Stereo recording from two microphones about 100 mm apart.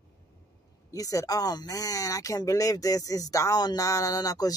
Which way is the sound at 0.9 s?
35° left (ahead or behind).